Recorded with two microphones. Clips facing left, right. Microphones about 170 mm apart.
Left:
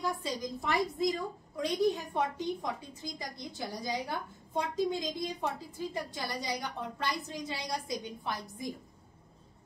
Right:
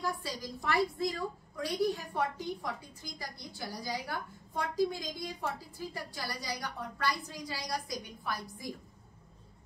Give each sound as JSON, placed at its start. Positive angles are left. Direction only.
{"t": 0.0, "sound": "a woman's voice", "side_deg": 20}